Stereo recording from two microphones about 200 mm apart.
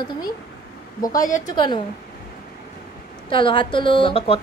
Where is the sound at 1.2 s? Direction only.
40° left (ahead or behind).